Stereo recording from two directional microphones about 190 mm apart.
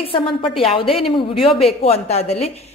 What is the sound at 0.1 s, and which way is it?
A woman's voice, 30° left (ahead or behind).